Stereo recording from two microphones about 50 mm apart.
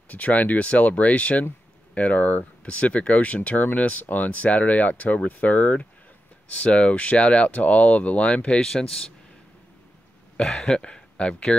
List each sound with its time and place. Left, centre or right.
0.1 s speech: left
10.3 s speech: centre